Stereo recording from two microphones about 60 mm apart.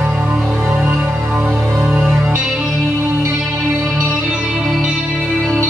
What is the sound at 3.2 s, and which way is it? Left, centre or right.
Music, centre.